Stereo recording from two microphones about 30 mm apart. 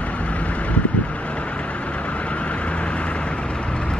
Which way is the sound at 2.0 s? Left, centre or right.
Left.